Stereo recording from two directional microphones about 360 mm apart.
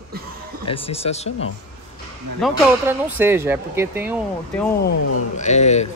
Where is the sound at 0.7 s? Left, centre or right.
Centre.